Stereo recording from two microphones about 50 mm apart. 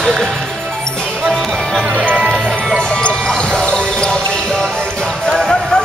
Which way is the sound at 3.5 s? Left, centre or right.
Centre.